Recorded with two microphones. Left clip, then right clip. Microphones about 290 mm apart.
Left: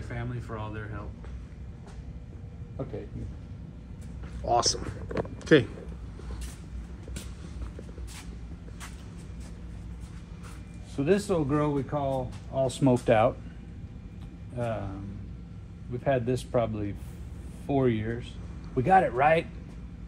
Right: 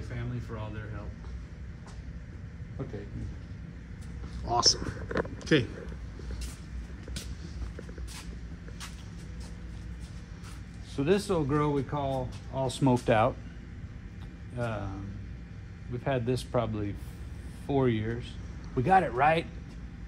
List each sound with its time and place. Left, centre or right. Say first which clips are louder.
0.1 s a sound: left 4 dB; centre
4.5 s speech: left 1 dB; centre
5.1 s speech: left 5 dB; centre
11.0 s speech: left 1 dB; centre
14.6 s speech: left 3 dB; centre
16.0 s speech: left 4 dB; centre